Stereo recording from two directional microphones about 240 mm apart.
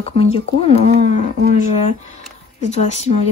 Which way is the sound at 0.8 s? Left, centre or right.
Right.